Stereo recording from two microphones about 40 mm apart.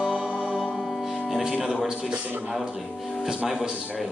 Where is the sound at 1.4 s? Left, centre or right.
Centre.